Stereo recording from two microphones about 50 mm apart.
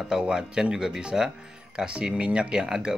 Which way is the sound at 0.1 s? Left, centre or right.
Centre.